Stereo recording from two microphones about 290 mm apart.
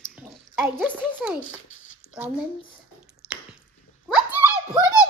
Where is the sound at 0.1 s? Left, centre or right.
Centre.